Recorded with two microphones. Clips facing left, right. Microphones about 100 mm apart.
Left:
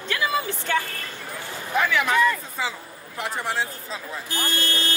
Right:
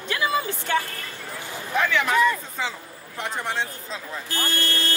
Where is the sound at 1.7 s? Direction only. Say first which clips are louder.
Even; 5° left (ahead or behind).